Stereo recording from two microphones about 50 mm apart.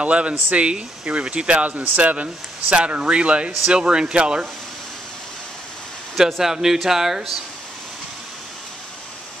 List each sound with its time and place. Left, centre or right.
0.0 s speech: right
6.4 s speech: centre